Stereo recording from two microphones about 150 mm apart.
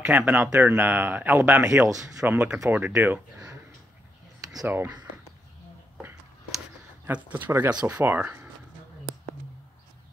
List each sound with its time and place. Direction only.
0.0 s speech: 10° right (ahead or behind)
4.6 s speech: 10° right (ahead or behind)
7.1 s speech: 10° right (ahead or behind)